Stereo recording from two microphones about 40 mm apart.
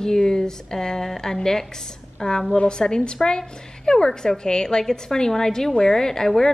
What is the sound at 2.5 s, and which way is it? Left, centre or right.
A woman's voice, left.